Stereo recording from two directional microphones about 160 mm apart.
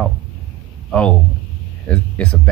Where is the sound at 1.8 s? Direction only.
10° left (ahead or behind).